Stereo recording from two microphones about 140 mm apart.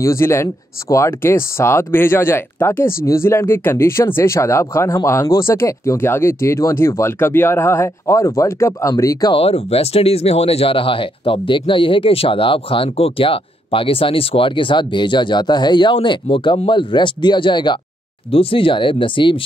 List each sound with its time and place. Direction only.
0.0 s speech: 20° left (ahead or behind)
9.3 s speech: 45° left (ahead or behind)